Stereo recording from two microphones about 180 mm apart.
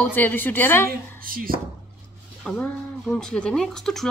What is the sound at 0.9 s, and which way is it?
Speech, 55° right (ahead or behind).